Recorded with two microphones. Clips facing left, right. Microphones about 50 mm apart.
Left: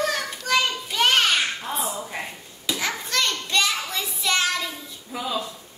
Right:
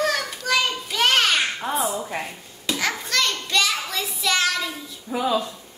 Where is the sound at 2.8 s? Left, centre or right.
Centre.